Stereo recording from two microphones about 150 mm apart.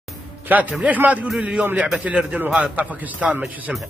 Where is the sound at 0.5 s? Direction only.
10° right (ahead or behind).